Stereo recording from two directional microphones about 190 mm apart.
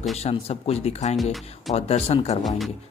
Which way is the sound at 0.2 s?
30° left (ahead or behind).